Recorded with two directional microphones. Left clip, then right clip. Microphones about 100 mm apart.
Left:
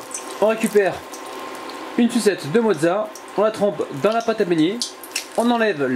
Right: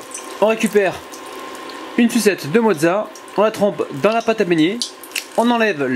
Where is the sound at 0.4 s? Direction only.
40° right (ahead or behind).